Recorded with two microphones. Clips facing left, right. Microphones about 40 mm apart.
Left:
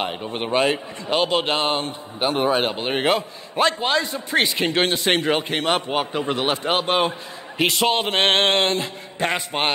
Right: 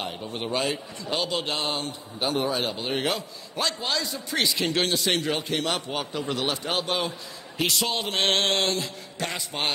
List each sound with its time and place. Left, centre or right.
0.0 s a man's voice: left